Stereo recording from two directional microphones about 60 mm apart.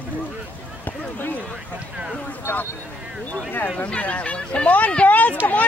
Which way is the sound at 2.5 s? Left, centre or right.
Left.